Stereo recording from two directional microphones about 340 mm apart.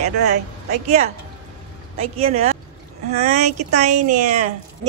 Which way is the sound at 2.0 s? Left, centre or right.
Centre.